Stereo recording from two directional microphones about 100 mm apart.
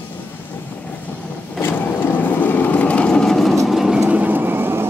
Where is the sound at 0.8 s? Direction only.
15° left (ahead or behind).